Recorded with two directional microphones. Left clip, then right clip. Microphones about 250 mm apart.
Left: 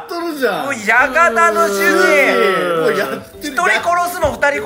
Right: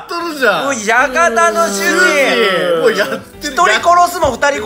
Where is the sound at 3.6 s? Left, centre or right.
Centre.